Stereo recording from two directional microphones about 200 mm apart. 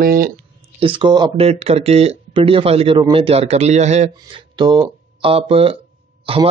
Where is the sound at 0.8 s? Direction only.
25° right (ahead or behind).